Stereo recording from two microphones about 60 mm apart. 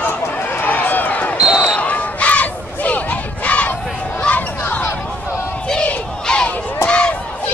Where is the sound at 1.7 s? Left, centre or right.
Left.